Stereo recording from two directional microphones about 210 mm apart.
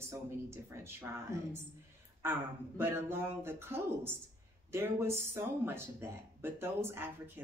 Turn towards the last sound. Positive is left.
turn(degrees=-10)  # may be behind; listen again after turning